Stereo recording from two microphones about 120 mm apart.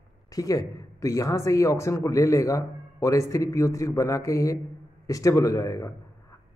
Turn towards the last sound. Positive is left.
turn(degrees=30)  # may be behind; listen again after turning